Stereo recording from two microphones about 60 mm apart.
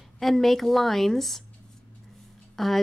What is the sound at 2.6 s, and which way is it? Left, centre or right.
Speech, centre.